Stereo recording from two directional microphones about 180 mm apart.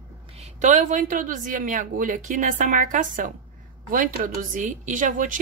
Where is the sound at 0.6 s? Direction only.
45° right (ahead or behind).